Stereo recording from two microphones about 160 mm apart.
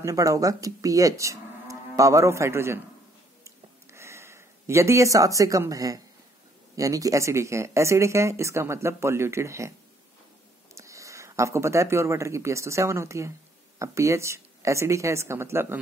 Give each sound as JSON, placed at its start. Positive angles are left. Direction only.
{"t": 0.0, "sound": "speech", "side_deg": -20}
{"t": 3.4, "sound": "a sound", "side_deg": -15}
{"t": 6.7, "sound": "speech", "side_deg": -20}
{"t": 10.7, "sound": "speech", "side_deg": -20}